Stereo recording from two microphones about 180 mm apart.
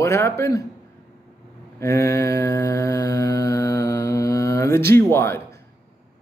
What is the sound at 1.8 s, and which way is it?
Mantra, 15° left (ahead or behind).